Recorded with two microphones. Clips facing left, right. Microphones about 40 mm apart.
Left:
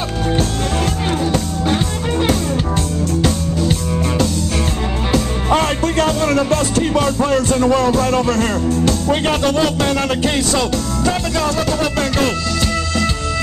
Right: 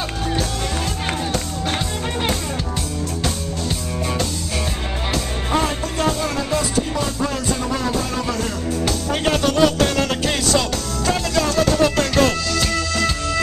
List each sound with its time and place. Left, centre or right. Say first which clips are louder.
5.6 s music: left 5 dB; left
9.1 s music: even; left
12.5 s music: left 2 dB; centre